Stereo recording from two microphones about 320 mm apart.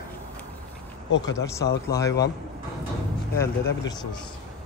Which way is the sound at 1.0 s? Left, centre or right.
Left.